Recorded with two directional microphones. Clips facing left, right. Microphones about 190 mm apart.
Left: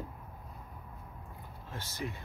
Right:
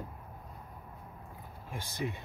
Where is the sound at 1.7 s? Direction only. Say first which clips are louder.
Right 3 dB; 15° right (ahead or behind).